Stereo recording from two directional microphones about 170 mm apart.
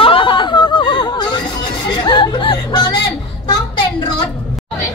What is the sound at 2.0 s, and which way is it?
Music, 25° left (ahead or behind).